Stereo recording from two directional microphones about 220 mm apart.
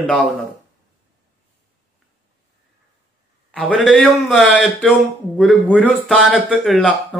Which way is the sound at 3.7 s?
5° left (ahead or behind).